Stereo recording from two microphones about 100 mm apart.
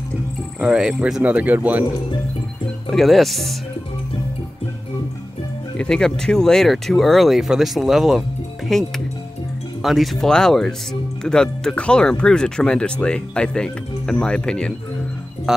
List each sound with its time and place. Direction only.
0.6 s speech: 10° right (ahead or behind)
1.2 s speech: 15° right (ahead or behind)
2.9 s speech: centre (ahead or behind)
5.8 s speech: 5° left (ahead or behind)